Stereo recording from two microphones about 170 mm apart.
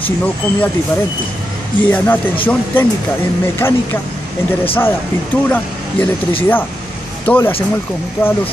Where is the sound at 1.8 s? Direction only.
10° left (ahead or behind).